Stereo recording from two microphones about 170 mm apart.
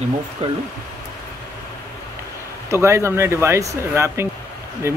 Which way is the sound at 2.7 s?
15° right (ahead or behind).